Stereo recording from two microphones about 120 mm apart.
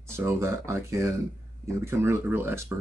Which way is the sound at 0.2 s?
20° right (ahead or behind).